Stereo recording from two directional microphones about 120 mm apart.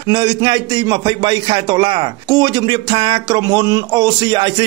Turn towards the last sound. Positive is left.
turn(degrees=-40)  # may be behind; listen again after turning